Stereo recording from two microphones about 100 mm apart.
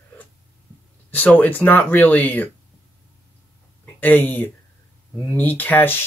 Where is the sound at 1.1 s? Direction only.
15° left (ahead or behind).